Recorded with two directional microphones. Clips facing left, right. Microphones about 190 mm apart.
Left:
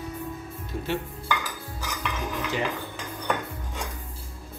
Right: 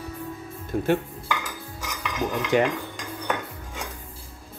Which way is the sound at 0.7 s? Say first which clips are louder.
Right 8 dB; 55° right (ahead or behind).